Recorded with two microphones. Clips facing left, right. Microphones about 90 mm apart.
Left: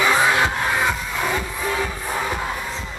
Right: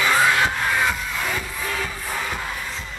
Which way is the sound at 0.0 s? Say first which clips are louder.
Left 1 dB; 20° left (ahead or behind).